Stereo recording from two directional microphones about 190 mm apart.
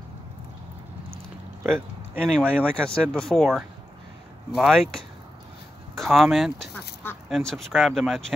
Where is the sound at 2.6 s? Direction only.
5° left (ahead or behind).